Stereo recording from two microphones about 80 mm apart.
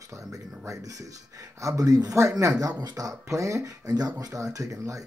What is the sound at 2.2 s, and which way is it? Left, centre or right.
Speech, right.